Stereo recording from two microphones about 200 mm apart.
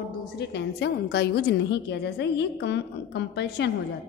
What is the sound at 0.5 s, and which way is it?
A woman's voice, 60° left (ahead or behind).